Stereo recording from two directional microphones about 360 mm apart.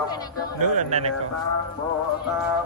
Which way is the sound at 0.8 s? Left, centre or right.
Centre.